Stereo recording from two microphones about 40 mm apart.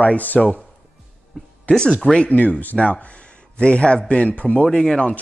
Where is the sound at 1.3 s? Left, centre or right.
Centre.